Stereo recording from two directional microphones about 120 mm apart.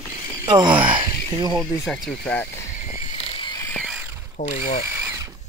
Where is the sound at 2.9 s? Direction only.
90° left.